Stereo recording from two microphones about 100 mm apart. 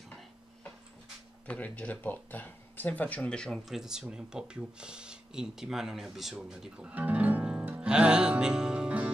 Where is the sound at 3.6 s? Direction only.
5° right (ahead or behind).